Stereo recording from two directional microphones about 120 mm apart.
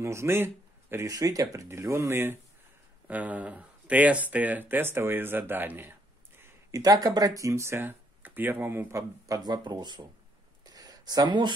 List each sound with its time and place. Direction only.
0.0 s speech: 20° right (ahead or behind)
1.0 s speech: 30° right (ahead or behind)
6.8 s speech: 30° right (ahead or behind)
9.2 s speech: 30° right (ahead or behind)
10.6 s a sound: 30° right (ahead or behind)